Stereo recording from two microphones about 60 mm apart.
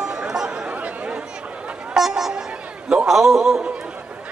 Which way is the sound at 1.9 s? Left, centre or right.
Centre.